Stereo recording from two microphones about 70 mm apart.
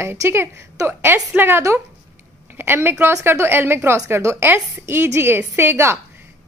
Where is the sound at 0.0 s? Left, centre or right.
Right.